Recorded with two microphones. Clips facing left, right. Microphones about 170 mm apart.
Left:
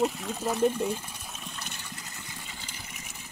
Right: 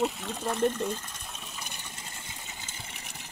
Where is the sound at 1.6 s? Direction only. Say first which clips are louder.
Left 1 dB; 20° right (ahead or behind).